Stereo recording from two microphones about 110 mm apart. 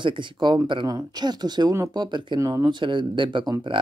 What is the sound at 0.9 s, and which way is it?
Speech, 35° right (ahead or behind).